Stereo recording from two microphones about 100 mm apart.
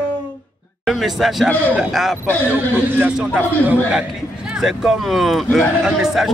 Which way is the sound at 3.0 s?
15° right (ahead or behind).